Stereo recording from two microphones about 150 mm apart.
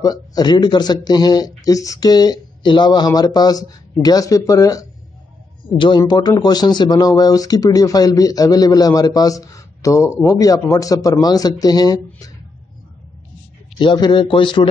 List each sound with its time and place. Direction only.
0.0 s speech: 25° left (ahead or behind)
13.7 s a man's voice: 30° left (ahead or behind)